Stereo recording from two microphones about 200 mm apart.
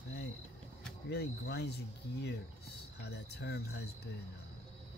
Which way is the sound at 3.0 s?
55° left (ahead or behind).